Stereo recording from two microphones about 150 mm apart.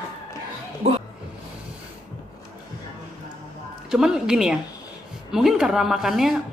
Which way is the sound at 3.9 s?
5° right (ahead or behind).